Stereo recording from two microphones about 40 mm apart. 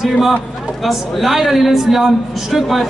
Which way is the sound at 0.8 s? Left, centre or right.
Centre.